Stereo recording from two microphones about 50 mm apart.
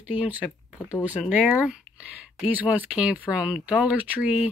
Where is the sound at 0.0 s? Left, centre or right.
Right.